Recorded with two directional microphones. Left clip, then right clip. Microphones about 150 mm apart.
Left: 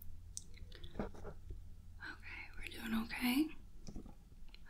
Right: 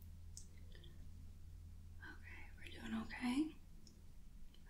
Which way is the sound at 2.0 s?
20° left (ahead or behind).